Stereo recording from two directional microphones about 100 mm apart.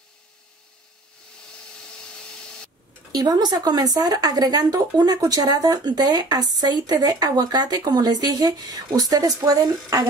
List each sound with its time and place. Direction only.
3.1 s speech: 40° right (ahead or behind)